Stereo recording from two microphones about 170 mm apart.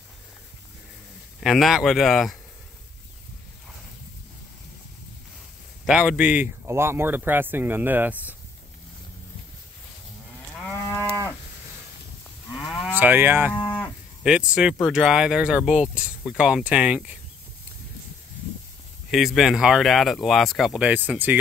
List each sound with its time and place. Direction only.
1.4 s speech: centre (ahead or behind)
5.9 s speech: 5° right (ahead or behind)
10.6 s moo: 15° left (ahead or behind)
12.5 s moo: 25° left (ahead or behind)
12.8 s moo: 10° right (ahead or behind)
13.5 s moo: 10° left (ahead or behind)
14.2 s speech: 5° right (ahead or behind)
19.0 s speech: centre (ahead or behind)